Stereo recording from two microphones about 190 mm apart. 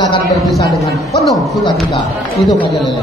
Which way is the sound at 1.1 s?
Centre (ahead or behind).